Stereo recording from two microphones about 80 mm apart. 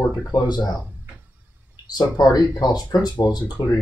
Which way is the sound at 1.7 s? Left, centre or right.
Left.